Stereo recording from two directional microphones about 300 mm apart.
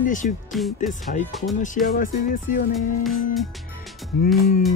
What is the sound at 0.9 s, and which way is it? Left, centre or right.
Speech, left.